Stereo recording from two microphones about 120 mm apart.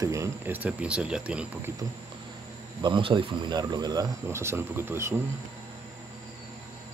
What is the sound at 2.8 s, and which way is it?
Speech, 40° right (ahead or behind).